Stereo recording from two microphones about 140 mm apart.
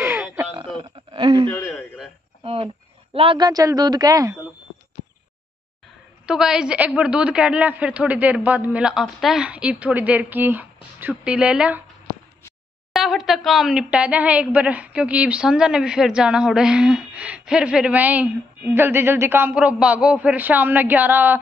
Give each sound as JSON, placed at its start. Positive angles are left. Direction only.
{"t": 1.1, "sound": "a sound", "side_deg": -40}
{"t": 3.4, "sound": "speech", "side_deg": -25}
{"t": 6.2, "sound": "a woman's voice", "side_deg": -5}
{"t": 12.9, "sound": "a woman's voice", "side_deg": 0}